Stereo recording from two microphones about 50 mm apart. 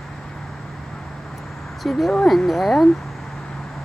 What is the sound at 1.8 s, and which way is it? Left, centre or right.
Speech, centre.